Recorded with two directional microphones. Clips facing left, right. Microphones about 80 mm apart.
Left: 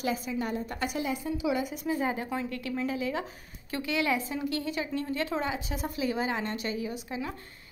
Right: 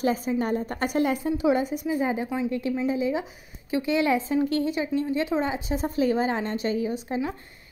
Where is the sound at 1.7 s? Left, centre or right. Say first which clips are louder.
Right 4 dB; centre.